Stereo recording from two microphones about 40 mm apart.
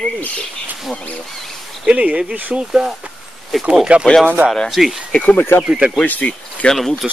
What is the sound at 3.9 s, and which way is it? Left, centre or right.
Speech, right.